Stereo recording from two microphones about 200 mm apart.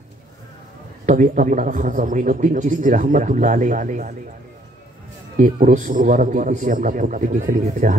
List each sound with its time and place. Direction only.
1.0 s a man's voice: 40° right (ahead or behind)
5.4 s a man's voice: 40° right (ahead or behind)